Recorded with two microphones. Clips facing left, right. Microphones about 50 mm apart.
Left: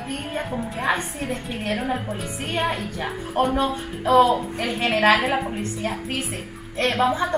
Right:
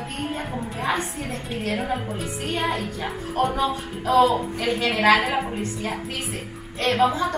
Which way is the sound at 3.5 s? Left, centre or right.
Centre.